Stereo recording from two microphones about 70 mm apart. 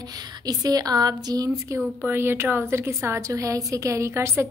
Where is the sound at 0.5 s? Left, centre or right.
Right.